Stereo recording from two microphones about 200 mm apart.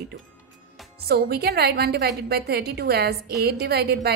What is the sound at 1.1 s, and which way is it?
A woman's voice, 50° right (ahead or behind).